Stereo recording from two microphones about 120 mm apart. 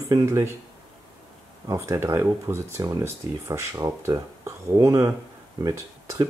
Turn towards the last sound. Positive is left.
turn(degrees=-30)  # may be behind; listen again after turning